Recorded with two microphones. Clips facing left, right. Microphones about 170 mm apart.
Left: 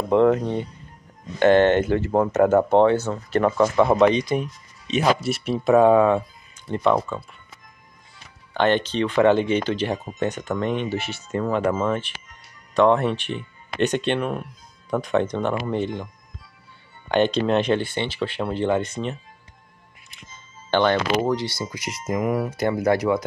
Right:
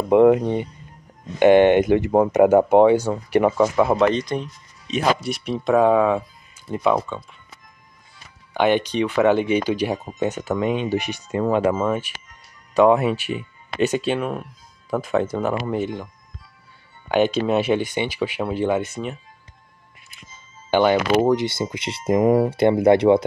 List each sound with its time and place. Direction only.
0.1 s speech: 15° right (ahead or behind)
4.2 s speech: 10° left (ahead or behind)
8.5 s speech: 10° right (ahead or behind)
17.1 s speech: 5° right (ahead or behind)
20.7 s speech: 10° right (ahead or behind); by 23.2 s 25° right (ahead or behind)